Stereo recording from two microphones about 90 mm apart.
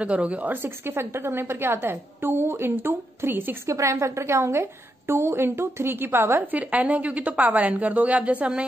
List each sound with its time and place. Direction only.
0.0 s a woman's voice: 15° right (ahead or behind)